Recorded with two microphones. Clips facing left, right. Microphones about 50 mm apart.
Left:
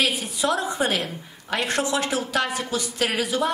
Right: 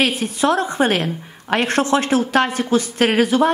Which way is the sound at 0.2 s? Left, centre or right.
Right.